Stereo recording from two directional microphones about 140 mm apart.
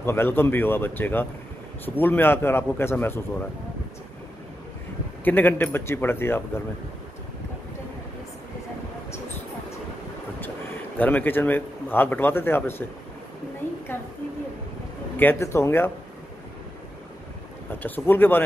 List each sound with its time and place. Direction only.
0.0 s a man's voice: 15° left (ahead or behind)
5.2 s a man's voice: 15° left (ahead or behind)
11.0 s a man's voice: 15° left (ahead or behind)
15.1 s a man's voice: 15° left (ahead or behind)
17.8 s a man's voice: 15° left (ahead or behind)